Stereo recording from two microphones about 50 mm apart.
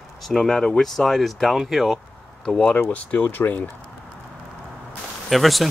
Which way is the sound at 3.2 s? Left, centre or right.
Left.